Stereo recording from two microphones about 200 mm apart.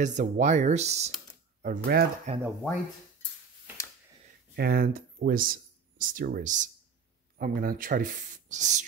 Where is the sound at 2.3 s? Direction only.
35° right (ahead or behind).